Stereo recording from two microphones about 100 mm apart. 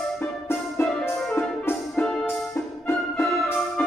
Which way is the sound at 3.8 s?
20° left (ahead or behind).